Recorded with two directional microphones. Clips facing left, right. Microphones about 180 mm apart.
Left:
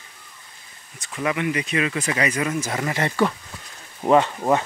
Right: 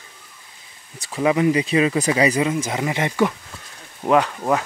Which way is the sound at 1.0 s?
30° right (ahead or behind).